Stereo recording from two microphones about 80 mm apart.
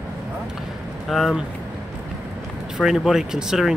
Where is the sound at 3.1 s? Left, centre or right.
Centre.